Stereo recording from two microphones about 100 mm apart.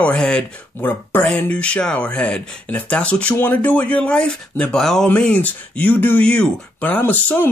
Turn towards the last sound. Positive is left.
turn(degrees=15)  # may be behind; listen again after turning